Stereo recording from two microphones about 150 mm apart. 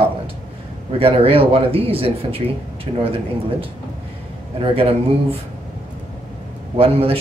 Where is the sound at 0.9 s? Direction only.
40° right (ahead or behind).